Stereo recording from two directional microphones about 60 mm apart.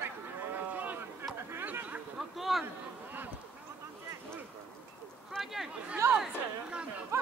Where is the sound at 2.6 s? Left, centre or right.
Right.